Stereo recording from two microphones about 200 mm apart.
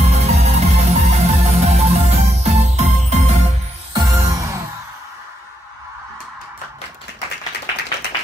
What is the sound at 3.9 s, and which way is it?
Music, 20° right (ahead or behind).